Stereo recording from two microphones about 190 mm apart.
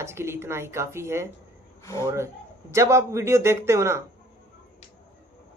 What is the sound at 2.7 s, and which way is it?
Speech, 15° right (ahead or behind).